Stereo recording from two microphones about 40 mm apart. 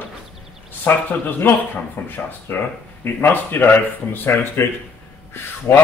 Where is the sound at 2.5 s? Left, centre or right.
Left.